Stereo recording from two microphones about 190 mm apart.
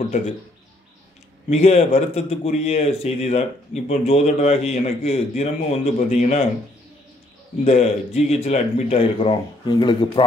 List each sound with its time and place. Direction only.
1.5 s a man's voice: 35° left (ahead or behind)
7.6 s a man's voice: 35° left (ahead or behind)